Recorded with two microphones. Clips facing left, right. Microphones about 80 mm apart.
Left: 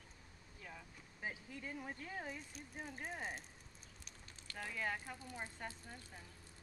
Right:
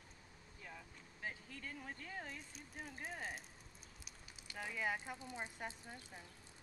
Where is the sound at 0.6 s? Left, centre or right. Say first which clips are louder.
Left 1 dB; centre.